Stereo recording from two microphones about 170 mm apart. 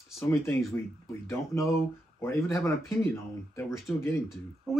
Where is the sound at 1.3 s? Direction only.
15° left (ahead or behind).